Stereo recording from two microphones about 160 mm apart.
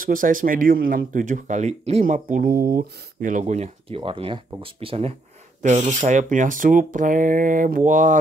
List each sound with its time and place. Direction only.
0.0 s speech: 60° right (ahead or behind); by 2.0 s 45° right (ahead or behind)
2.7 s speech: 60° right (ahead or behind); by 5.1 s 40° right (ahead or behind)
5.6 s speech: 50° right (ahead or behind)